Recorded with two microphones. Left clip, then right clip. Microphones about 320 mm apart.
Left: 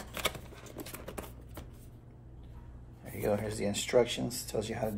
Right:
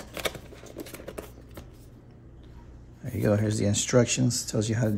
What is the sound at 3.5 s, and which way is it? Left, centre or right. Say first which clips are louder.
Speech: right 4 dB; right.